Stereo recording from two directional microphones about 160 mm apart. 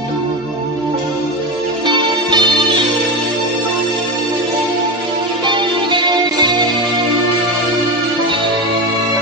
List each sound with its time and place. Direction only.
2.0 s music: 30° right (ahead or behind)
5.5 s music: 30° right (ahead or behind)